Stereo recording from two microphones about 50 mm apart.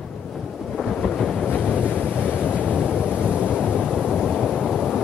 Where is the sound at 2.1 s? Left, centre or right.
Left.